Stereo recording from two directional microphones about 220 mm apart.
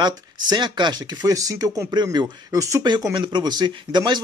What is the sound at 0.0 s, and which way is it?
Speech, 20° right (ahead or behind).